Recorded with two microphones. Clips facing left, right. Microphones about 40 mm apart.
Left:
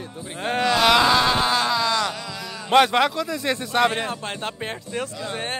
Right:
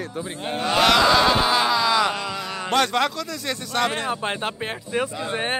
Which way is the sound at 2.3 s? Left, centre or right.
Right.